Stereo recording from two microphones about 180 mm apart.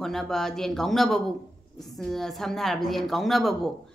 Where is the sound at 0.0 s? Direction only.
Centre (ahead or behind).